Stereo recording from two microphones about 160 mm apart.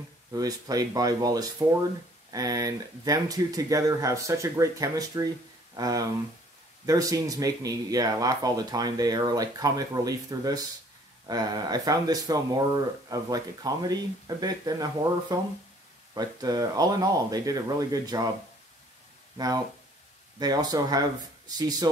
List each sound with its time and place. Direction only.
0.3 s speech: 20° right (ahead or behind)
19.3 s speech: 25° right (ahead or behind)